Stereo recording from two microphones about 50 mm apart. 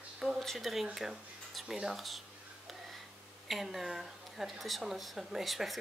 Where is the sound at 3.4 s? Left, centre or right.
Centre.